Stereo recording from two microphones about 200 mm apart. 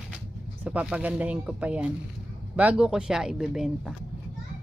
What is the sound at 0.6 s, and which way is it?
Speech, 5° right (ahead or behind).